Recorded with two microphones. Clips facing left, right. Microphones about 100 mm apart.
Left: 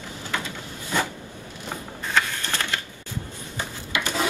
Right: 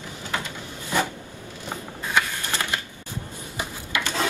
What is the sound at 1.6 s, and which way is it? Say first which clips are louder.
Printer: even; 15° right (ahead or behind).